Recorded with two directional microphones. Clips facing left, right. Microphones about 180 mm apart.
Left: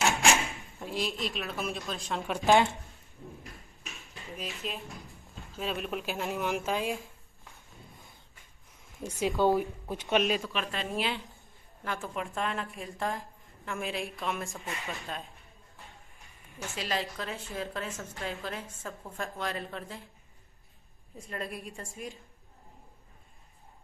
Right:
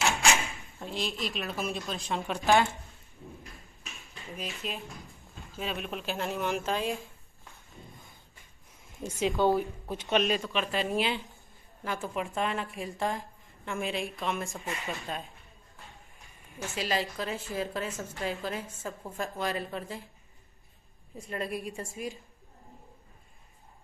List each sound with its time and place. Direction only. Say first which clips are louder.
0.7 s speech: left 1 dB; 5° left (ahead or behind)
2.3 s speech: left 1 dB; 20° left (ahead or behind)
4.3 s speech: right 1 dB; centre (ahead or behind)
9.4 s a woman's voice: left 1 dB; 10° left (ahead or behind); by 20.0 s 5° right (ahead or behind)
21.2 s speech: right 4 dB; 5° right (ahead or behind)